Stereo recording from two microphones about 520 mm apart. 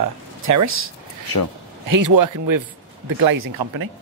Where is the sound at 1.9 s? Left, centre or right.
Right.